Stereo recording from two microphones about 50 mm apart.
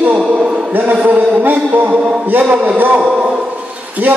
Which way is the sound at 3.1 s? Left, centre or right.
Centre.